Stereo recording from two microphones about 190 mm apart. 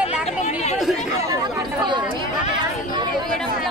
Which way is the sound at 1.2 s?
25° right (ahead or behind).